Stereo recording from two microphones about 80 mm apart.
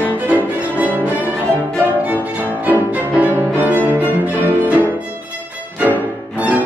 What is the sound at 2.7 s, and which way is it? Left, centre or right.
Music, right.